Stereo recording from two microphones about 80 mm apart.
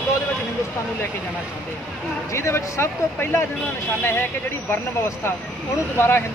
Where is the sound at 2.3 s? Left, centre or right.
Left.